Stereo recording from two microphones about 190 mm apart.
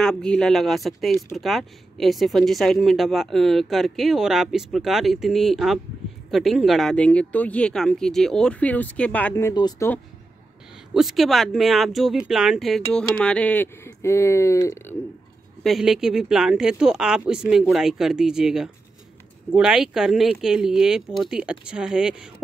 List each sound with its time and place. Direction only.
0.0 s speech: 5° left (ahead or behind); by 9.8 s 20° left (ahead or behind)
10.9 s speech: centre (ahead or behind); by 15.0 s 15° left (ahead or behind)
15.6 s speech: centre (ahead or behind)